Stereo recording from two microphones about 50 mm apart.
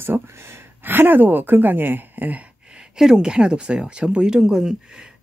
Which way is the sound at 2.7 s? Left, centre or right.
Centre.